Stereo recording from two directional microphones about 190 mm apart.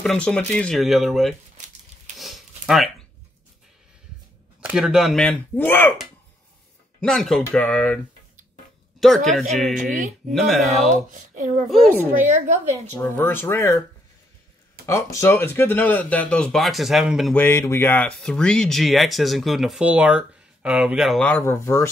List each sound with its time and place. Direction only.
0.0 s speech: 5° left (ahead or behind)
2.1 s a sound: centre (ahead or behind)
4.6 s speech: 5° right (ahead or behind)
7.0 s speech: 5° left (ahead or behind)
9.0 s speech: centre (ahead or behind)
11.1 s a child's voice: 40° right (ahead or behind)
11.7 s speech: centre (ahead or behind)
12.3 s a woman's voice: 40° right (ahead or behind)
12.9 s speech: 10° left (ahead or behind)
14.9 s speech: 15° left (ahead or behind); by 17.4 s centre (ahead or behind)
17.4 s speech: 15° left (ahead or behind)